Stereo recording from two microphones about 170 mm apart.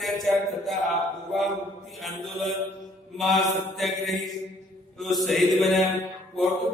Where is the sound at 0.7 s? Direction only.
Centre (ahead or behind).